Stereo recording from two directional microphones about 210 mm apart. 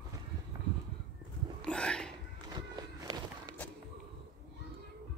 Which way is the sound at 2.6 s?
20° right (ahead or behind).